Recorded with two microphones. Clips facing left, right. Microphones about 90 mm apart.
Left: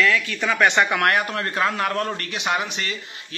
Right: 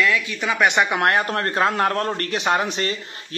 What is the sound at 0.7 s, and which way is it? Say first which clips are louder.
Speech: right 1 dB; 20° right (ahead or behind).